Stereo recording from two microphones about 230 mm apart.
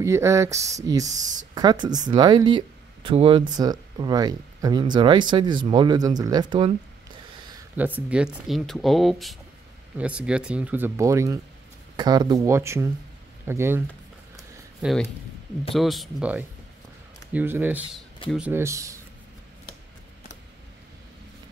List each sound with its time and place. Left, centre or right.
0.0 s speech: centre
1.0 s speech: right
1.5 s speech: centre
7.7 s speech: centre